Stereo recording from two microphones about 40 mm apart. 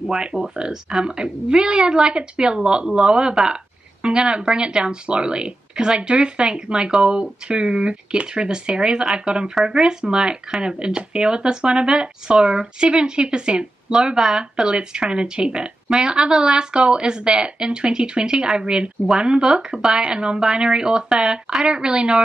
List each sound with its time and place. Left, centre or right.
0.1 s speech: right